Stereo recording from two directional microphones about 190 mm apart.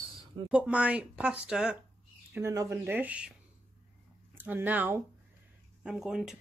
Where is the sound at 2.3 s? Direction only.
15° right (ahead or behind).